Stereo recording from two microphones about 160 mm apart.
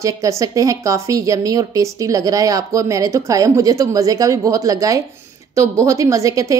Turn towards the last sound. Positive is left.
turn(degrees=-20)  # may be behind; listen again after turning